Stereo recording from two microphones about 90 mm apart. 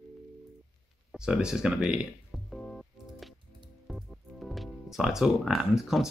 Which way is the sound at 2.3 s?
5° left (ahead or behind).